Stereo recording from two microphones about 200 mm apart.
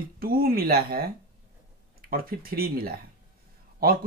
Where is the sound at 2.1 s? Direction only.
45° right (ahead or behind).